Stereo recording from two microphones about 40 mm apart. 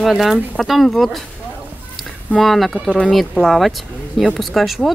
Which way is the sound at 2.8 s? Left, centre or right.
Left.